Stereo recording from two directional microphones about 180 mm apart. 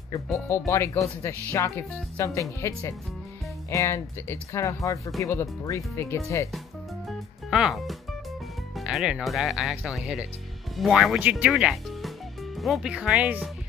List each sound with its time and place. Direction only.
0.5 s speech: 15° left (ahead or behind)
7.1 s music: centre (ahead or behind)
8.7 s speech: centre (ahead or behind)